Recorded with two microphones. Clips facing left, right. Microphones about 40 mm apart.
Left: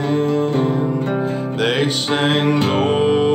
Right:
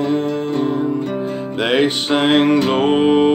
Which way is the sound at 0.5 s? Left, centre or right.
Left.